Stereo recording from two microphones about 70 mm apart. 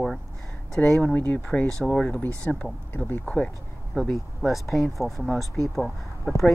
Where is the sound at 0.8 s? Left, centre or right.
Left.